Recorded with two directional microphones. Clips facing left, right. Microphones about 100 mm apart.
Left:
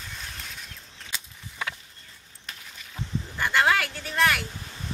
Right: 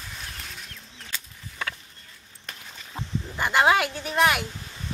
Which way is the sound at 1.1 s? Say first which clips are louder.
Even; 10° left (ahead or behind).